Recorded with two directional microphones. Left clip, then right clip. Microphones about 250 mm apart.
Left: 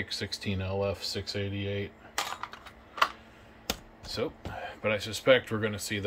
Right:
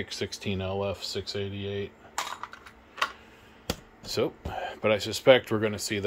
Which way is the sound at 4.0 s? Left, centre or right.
Right.